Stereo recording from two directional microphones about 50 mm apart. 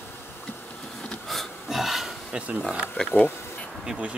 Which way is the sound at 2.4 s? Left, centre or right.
Right.